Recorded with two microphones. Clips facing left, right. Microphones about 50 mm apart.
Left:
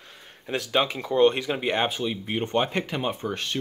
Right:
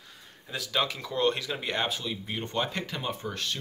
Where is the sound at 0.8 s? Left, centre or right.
Left.